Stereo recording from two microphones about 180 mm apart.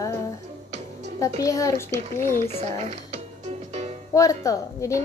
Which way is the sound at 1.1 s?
20° left (ahead or behind).